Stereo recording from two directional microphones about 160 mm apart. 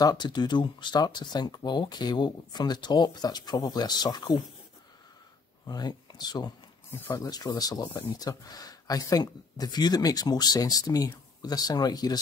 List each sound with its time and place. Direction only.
0.0 s speech: 25° left (ahead or behind)
5.7 s speech: 25° left (ahead or behind)